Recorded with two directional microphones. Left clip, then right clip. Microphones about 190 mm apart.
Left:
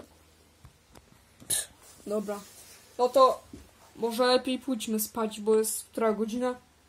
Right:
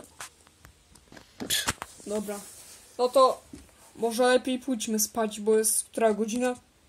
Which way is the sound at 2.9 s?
15° right (ahead or behind).